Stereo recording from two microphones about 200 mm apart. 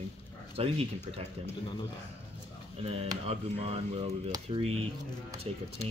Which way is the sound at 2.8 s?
30° right (ahead or behind).